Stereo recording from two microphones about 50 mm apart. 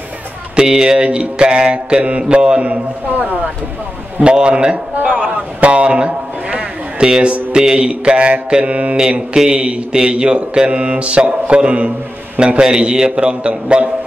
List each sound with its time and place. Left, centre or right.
0.6 s mantra: centre
4.2 s a man's voice: right
7.5 s mantra: centre
9.3 s mantra: centre